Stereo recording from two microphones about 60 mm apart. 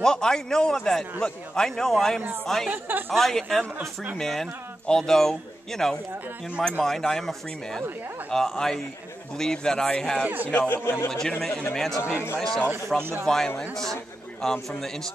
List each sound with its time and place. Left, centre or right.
0.0 s a man's voice: centre
2.7 s a woman's voice: right
3.1 s a man's voice: centre
10.2 s a man's voice: right
10.7 s speech: left
11.1 s a man's voice: centre